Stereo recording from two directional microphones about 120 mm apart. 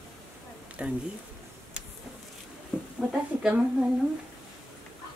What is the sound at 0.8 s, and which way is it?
Speech, 10° right (ahead or behind).